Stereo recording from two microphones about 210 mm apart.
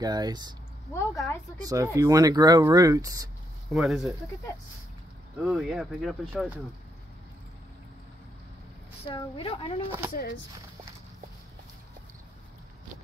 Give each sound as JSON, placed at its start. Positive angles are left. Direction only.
{"t": 0.0, "sound": "speech", "side_deg": -20}
{"t": 0.9, "sound": "a woman's voice", "side_deg": 15}
{"t": 1.6, "sound": "speech", "side_deg": -15}
{"t": 3.7, "sound": "speech", "side_deg": 0}
{"t": 5.4, "sound": "speech", "side_deg": -5}
{"t": 9.0, "sound": "speech", "side_deg": 25}
{"t": 9.8, "sound": "speech", "side_deg": -10}
{"t": 10.1, "sound": "speech", "side_deg": 50}